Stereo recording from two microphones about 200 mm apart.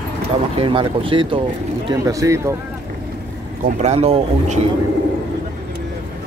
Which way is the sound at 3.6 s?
35° right (ahead or behind).